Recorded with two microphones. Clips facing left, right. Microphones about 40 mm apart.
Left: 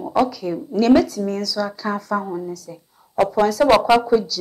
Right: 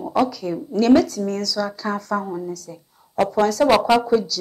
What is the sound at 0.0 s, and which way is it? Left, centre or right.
Speech, centre.